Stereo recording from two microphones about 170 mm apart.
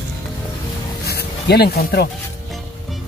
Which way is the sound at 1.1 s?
70° left (ahead or behind).